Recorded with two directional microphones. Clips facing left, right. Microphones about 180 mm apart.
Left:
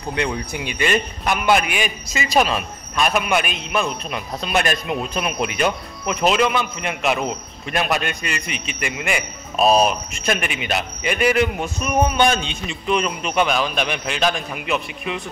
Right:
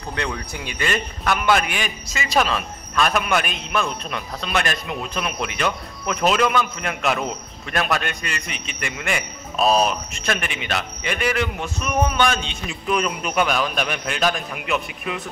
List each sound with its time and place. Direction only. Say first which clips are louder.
0.1 s a man's voice: left 4 dB; 15° left (ahead or behind)
6.2 s a man's voice: left 1 dB; 5° left (ahead or behind)
8.5 s a man's voice: left 4 dB; 35° right (ahead or behind)
8.8 s a man's voice: left 2 dB; 10° left (ahead or behind)
12.6 s a man's voice: left 1 dB; centre (ahead or behind)